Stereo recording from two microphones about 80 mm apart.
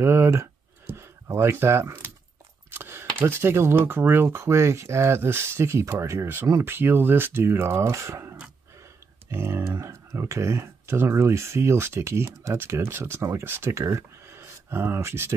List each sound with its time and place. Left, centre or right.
0.0 s speech: right
2.7 s a sound: right
3.2 s speech: right